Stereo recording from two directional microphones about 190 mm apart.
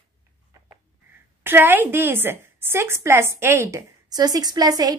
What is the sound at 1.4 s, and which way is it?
A woman's voice, 10° right (ahead or behind).